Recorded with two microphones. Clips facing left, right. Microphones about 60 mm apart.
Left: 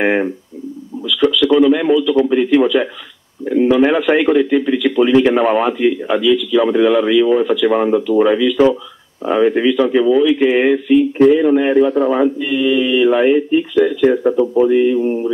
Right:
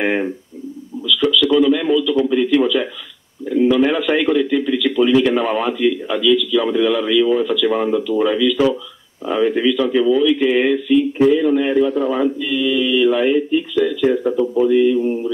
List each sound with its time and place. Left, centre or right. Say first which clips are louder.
0.0 s speech: left 4 dB; left
1.0 s radio: left 2 dB; left
1.7 s a man's voice: left 3 dB; left